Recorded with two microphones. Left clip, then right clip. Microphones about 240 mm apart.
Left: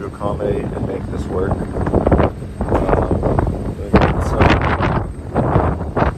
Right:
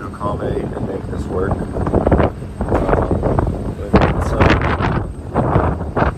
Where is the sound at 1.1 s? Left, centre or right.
Right.